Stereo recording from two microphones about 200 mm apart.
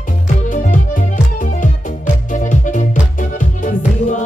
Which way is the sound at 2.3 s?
40° left (ahead or behind).